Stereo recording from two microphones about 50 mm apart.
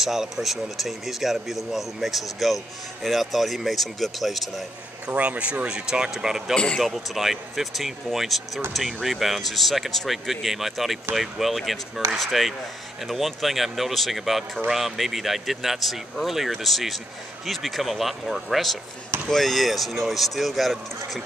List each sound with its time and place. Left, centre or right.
0.0 s speech: centre
5.0 s speech: right; by 6.5 s centre
6.5 s speech: centre
6.8 s speech: centre